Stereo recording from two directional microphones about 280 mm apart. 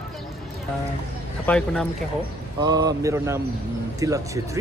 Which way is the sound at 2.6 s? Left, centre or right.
Centre.